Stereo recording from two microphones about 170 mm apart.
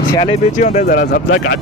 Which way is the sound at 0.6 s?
50° left (ahead or behind).